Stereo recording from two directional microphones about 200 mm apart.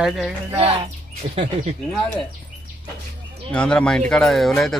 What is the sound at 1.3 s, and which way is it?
Speech, 30° right (ahead or behind).